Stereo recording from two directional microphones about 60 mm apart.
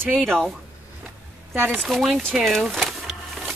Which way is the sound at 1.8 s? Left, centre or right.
Centre.